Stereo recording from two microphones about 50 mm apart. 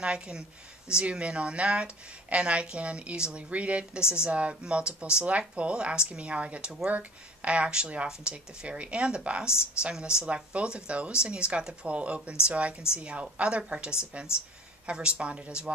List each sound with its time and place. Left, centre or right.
0.0 s speech: centre